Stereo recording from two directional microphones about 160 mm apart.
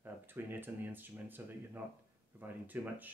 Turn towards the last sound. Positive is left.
turn(degrees=-10)  # may be behind; listen again after turning